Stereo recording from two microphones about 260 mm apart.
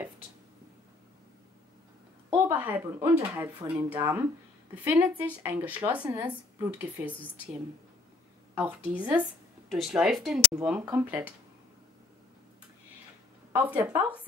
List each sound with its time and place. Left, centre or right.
2.3 s speech: centre
8.5 s speech: centre
13.5 s speech: centre